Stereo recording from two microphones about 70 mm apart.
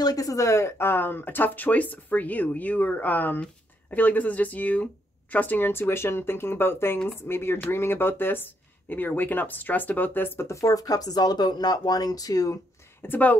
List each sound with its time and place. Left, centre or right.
0.0 s speech: left
10.5 s speech: left
13.0 s speech: left